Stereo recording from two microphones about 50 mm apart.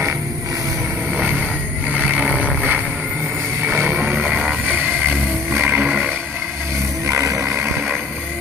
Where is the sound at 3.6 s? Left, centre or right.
Right.